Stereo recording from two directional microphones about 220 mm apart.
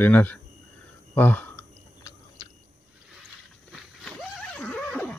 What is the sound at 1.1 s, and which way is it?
Chewing, 10° left (ahead or behind).